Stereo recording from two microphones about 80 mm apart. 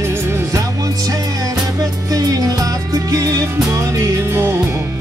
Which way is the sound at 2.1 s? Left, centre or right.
Right.